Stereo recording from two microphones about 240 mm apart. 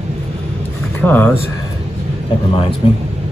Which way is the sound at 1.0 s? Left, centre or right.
Centre.